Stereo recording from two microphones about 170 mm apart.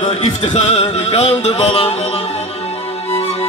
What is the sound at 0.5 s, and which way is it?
Speech, 40° left (ahead or behind).